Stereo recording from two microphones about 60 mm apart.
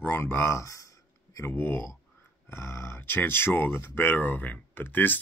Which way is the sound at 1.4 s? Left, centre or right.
Left.